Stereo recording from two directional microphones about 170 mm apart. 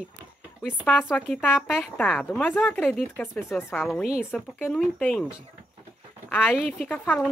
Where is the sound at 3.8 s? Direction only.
Centre (ahead or behind).